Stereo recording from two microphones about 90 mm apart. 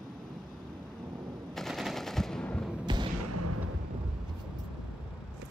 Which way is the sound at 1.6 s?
Centre (ahead or behind).